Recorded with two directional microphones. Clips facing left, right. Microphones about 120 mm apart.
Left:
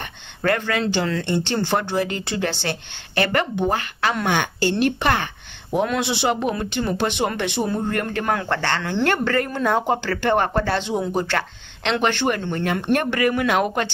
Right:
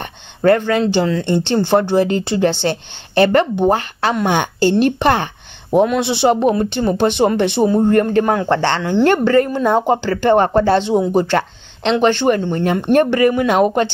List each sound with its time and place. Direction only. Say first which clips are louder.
0.0 s a woman's voice: right 9 dB; 30° right (ahead or behind)